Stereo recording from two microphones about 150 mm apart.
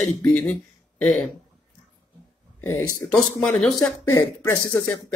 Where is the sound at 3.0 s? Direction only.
5° left (ahead or behind).